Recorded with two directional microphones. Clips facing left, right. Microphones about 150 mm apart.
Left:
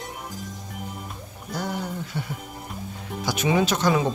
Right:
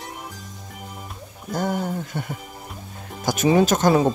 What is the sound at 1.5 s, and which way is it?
Speech, 50° right (ahead or behind).